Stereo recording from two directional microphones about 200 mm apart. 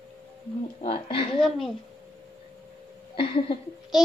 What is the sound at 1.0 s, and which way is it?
Speech, 25° left (ahead or behind).